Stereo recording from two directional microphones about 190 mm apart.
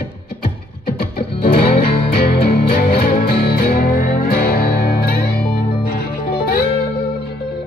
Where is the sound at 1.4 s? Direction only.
55° left (ahead or behind).